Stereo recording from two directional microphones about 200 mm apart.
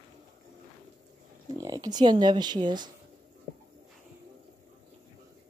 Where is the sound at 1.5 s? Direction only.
20° right (ahead or behind).